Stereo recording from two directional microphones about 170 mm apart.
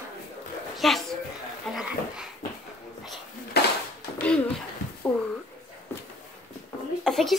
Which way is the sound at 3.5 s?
70° left (ahead or behind).